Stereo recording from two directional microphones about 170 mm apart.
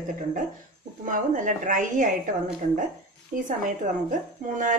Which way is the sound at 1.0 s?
50° right (ahead or behind).